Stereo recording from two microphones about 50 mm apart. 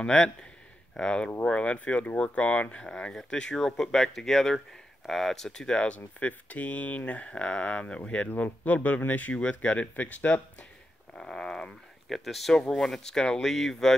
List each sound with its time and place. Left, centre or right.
0.0 s speech: centre
3.5 s speech: centre
5.9 s speech: left
8.6 s speech: left
11.1 s speech: centre
12.1 s speech: centre